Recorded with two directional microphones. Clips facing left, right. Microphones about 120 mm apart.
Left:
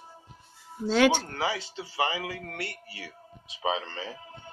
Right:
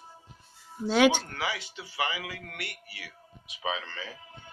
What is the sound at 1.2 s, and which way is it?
A man's voice, 30° left (ahead or behind).